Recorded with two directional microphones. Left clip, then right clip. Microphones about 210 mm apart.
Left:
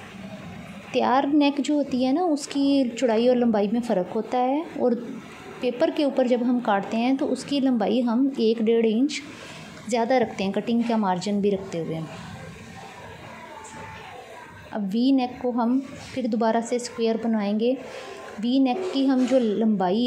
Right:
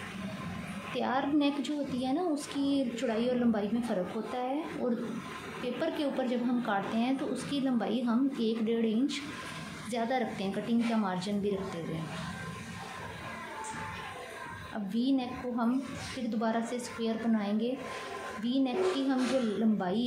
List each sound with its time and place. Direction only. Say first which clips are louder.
0.9 s a child's voice: left 10 dB; 35° left (ahead or behind)
14.7 s a child's voice: left 9 dB; 30° left (ahead or behind)